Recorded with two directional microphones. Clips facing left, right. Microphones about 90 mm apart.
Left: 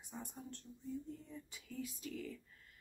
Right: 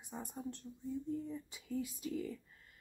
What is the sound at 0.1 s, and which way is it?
Speech, 10° right (ahead or behind).